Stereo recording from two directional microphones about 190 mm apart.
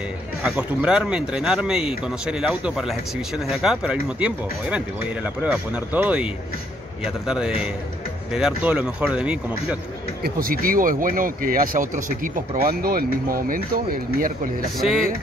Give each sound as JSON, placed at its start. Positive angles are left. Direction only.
{"t": 0.5, "sound": "speech", "side_deg": -5}
{"t": 10.2, "sound": "speech", "side_deg": -50}
{"t": 14.8, "sound": "speech", "side_deg": 0}